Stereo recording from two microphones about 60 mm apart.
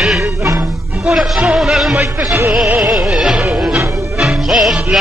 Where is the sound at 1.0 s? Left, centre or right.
Centre.